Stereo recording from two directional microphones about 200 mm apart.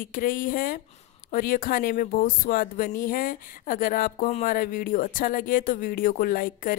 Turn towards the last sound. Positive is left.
turn(degrees=45)  # may be behind; listen again after turning